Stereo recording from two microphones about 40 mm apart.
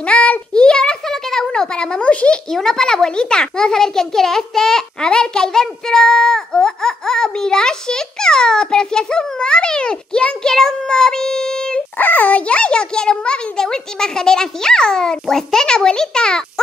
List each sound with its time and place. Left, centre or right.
0.0 s a sound: left
0.6 s a sound: centre
1.5 s speech: left
2.5 s a child's voice: centre
10.5 s child singing: centre
12.0 s a child's voice: left; by 16.4 s centre